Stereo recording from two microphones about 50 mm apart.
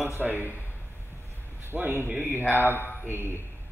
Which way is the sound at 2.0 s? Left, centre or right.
Right.